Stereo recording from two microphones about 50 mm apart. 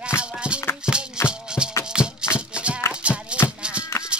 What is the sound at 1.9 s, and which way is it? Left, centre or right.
Music, centre.